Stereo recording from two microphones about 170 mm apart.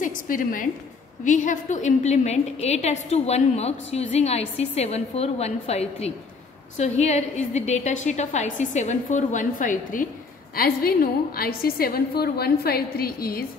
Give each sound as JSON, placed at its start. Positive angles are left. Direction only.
{"t": 0.0, "sound": "a sound", "side_deg": 50}
{"t": 1.2, "sound": "a woman's voice", "side_deg": 45}
{"t": 10.5, "sound": "a woman's voice", "side_deg": 60}